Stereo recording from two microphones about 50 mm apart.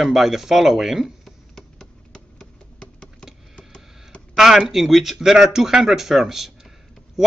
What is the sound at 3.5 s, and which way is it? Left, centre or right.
Music, left.